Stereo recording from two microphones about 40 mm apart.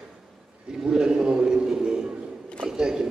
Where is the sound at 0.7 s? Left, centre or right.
Centre.